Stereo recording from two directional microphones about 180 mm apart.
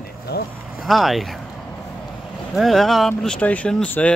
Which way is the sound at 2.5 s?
Centre (ahead or behind).